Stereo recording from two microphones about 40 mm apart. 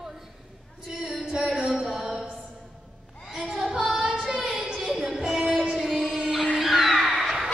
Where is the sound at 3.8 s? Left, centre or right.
Right.